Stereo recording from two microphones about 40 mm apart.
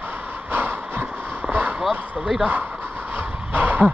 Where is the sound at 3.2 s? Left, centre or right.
Right.